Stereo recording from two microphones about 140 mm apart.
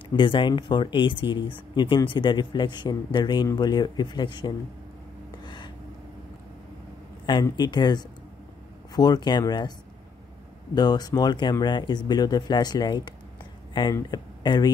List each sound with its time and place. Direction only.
0.1 s speech: 35° left (ahead or behind)
5.4 s a sound: 35° left (ahead or behind)
7.5 s speech: 30° left (ahead or behind)